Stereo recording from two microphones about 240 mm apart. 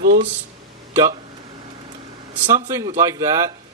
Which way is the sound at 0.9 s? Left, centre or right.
Centre.